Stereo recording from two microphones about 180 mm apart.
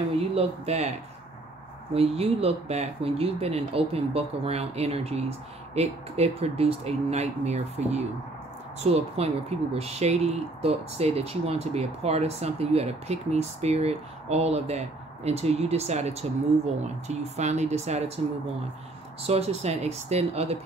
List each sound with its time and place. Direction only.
0.3 s speech: 35° right (ahead or behind)
2.0 s speech: 35° right (ahead or behind)
19.2 s speech: 35° right (ahead or behind)